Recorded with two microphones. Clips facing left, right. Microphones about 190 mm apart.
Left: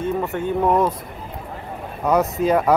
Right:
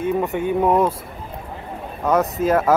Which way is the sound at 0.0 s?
15° right (ahead or behind).